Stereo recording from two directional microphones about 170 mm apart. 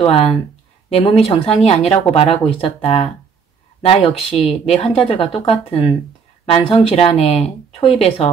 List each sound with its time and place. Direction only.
0.0 s speech: 35° left (ahead or behind)